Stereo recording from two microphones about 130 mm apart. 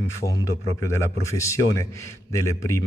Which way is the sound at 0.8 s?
20° left (ahead or behind).